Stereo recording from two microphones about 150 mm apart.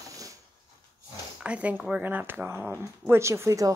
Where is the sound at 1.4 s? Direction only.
10° right (ahead or behind).